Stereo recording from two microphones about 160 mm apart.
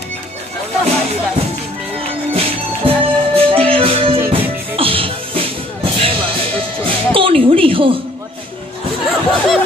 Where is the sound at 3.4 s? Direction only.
35° right (ahead or behind).